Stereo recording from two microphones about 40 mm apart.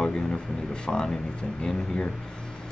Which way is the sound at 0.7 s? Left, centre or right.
Centre.